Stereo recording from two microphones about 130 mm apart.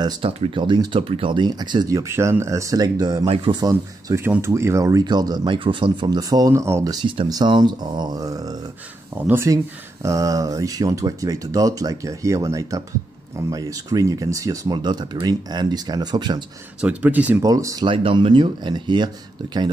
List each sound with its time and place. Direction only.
0.2 s speech: 45° right (ahead or behind)
4.1 s speech: 20° right (ahead or behind)
16.8 s speech: 10° right (ahead or behind)
17.4 s speech: 25° right (ahead or behind)
17.8 s speech: 40° right (ahead or behind)